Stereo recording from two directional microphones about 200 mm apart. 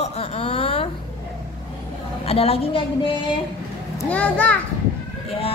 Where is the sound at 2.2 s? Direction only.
30° left (ahead or behind).